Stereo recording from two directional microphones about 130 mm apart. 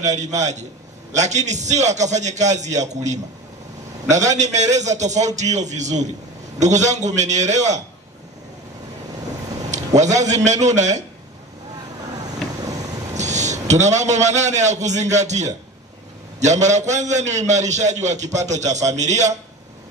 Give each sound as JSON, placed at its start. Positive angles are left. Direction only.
{"t": 0.0, "sound": "a man's voice", "side_deg": -65}
{"t": 9.7, "sound": "a man's voice", "side_deg": -65}
{"t": 13.1, "sound": "a man's voice", "side_deg": -65}